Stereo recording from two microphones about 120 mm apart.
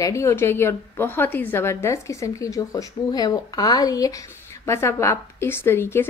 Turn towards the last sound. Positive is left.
turn(degrees=20)  # may be behind; listen again after turning